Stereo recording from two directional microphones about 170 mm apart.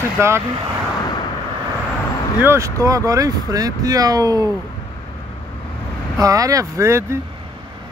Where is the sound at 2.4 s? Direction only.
15° right (ahead or behind).